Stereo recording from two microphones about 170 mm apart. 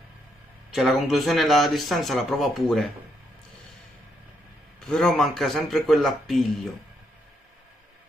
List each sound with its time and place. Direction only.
0.7 s speech: centre (ahead or behind)
4.7 s speech: 5° left (ahead or behind)